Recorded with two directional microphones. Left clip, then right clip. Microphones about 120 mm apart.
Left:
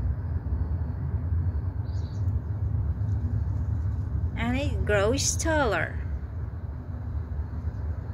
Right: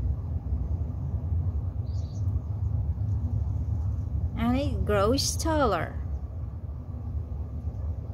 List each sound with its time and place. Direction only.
4.4 s speech: 45° right (ahead or behind)